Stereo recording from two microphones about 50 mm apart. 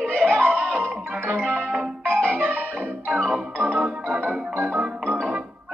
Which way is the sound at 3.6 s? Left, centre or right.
Right.